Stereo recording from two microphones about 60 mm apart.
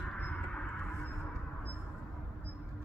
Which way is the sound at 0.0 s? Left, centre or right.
Centre.